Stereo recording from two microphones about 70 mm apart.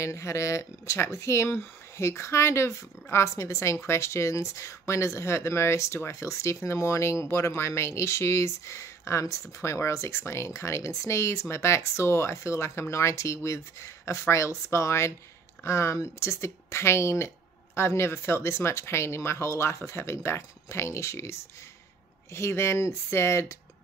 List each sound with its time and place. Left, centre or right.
0.0 s speech: left